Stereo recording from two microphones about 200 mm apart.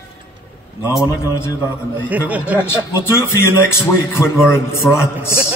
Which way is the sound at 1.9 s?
10° right (ahead or behind).